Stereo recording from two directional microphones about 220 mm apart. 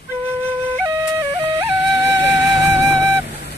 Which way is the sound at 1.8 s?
55° left (ahead or behind).